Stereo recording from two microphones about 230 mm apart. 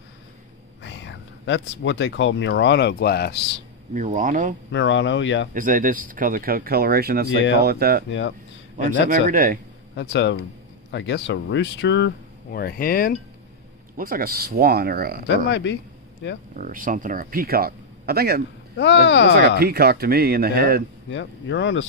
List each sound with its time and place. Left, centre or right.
0.8 s speech: left
3.9 s speech: right
4.6 s speech: left
5.5 s speech: right
8.1 s speech: left
9.1 s speech: right
9.9 s speech: left
13.9 s speech: right
15.2 s speech: left
16.5 s speech: right
18.8 s speech: left
19.6 s speech: right
21.1 s speech: left